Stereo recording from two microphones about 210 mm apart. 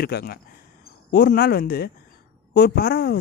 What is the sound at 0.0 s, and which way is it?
Speech, 45° left (ahead or behind).